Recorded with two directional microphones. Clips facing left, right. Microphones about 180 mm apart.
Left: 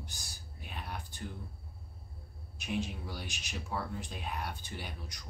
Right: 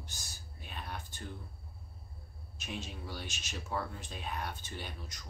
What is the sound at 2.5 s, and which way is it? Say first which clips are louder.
Speech: left 6 dB; 15° left (ahead or behind).